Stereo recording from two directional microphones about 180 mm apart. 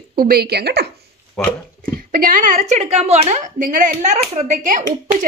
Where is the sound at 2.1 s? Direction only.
50° right (ahead or behind).